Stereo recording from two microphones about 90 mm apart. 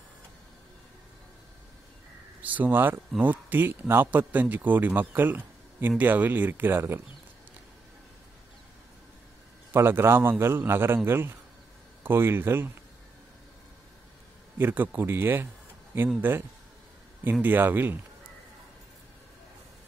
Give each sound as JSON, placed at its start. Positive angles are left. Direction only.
{"t": 2.4, "sound": "speech", "side_deg": -20}
{"t": 9.7, "sound": "speech", "side_deg": -25}
{"t": 14.6, "sound": "speech", "side_deg": -20}